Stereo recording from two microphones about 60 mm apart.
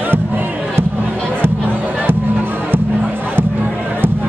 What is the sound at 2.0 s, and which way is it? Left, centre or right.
Music, right.